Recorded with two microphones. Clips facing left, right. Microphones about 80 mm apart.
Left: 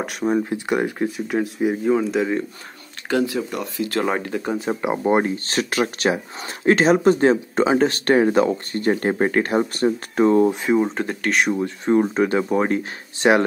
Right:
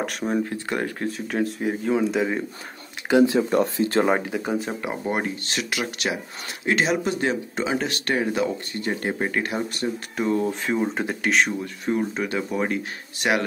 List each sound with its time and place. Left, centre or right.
0.0 s speech: centre
3.1 s speech: right
4.0 s speech: centre
4.8 s speech: left
10.5 s speech: centre
11.0 s speech: centre
11.5 s speech: left